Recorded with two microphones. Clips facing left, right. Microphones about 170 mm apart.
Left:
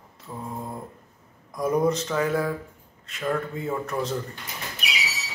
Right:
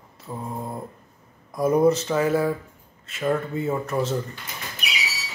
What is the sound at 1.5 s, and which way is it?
Speech, 10° right (ahead or behind).